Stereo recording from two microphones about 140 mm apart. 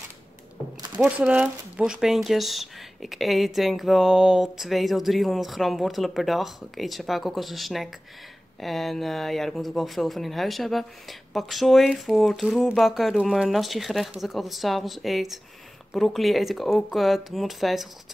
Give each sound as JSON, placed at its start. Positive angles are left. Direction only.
{"t": 0.9, "sound": "speech", "side_deg": -10}